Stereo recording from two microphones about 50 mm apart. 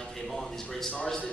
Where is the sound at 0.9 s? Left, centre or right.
Centre.